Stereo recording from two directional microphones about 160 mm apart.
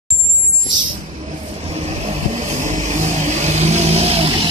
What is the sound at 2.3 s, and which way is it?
Vehicle, 50° right (ahead or behind).